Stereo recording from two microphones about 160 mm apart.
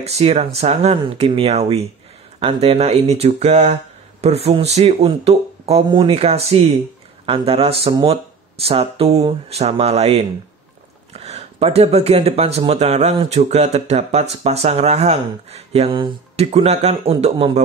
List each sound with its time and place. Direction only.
0.0 s speech: 40° right (ahead or behind)